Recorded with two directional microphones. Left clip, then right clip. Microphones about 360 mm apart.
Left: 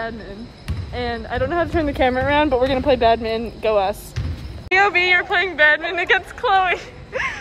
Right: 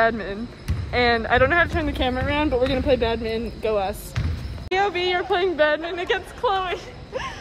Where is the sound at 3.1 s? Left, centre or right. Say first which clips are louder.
Left 6 dB; centre.